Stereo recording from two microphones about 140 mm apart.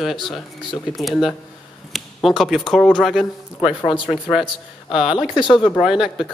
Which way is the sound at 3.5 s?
35° left (ahead or behind).